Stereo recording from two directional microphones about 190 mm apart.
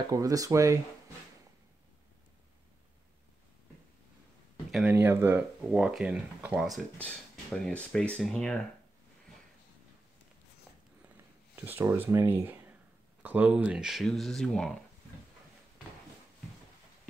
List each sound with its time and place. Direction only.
0.1 s speech: 20° right (ahead or behind)
4.6 s speech: 5° right (ahead or behind)
11.5 s speech: 10° right (ahead or behind)